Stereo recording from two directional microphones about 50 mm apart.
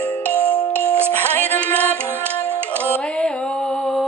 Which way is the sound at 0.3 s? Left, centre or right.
Left.